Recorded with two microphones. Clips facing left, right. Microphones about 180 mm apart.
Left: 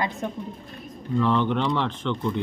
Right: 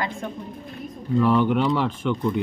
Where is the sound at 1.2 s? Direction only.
10° right (ahead or behind).